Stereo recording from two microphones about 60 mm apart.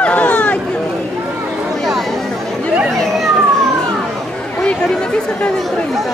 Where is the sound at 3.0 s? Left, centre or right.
Centre.